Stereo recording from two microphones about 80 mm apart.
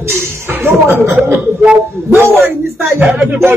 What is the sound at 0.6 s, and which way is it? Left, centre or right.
Speech, right.